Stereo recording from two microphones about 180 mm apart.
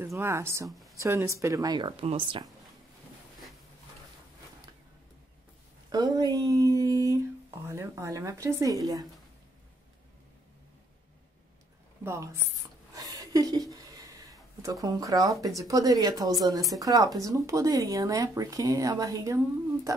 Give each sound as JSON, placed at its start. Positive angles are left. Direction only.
{"t": 0.0, "sound": "speech", "side_deg": -15}
{"t": 0.7, "sound": "speech", "side_deg": 0}
{"t": 0.9, "sound": "speech", "side_deg": -15}
{"t": 5.9, "sound": "a sound", "side_deg": -20}
{"t": 7.6, "sound": "speech", "side_deg": -15}
{"t": 12.0, "sound": "speech", "side_deg": -15}
{"t": 12.9, "sound": "a sound", "side_deg": -20}
{"t": 15.4, "sound": "speech", "side_deg": -20}